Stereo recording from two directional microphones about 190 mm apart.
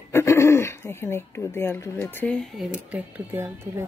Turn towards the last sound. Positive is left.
turn(degrees=-10)  # may be behind; listen again after turning